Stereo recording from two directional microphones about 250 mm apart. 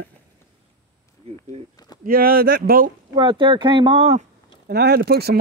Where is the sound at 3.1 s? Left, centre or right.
Centre.